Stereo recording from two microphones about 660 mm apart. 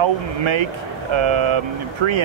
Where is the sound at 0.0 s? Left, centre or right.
Right.